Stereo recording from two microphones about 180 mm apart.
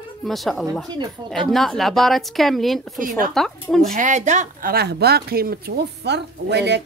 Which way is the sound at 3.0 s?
50° right (ahead or behind).